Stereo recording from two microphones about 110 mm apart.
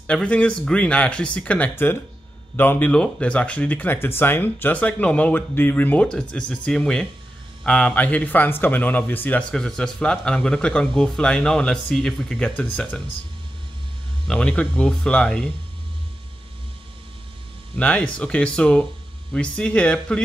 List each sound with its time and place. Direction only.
0.0 s speech: 10° left (ahead or behind)
9.5 s speech: 5° left (ahead or behind)
14.2 s speech: 10° left (ahead or behind)
17.7 s speech: 10° left (ahead or behind)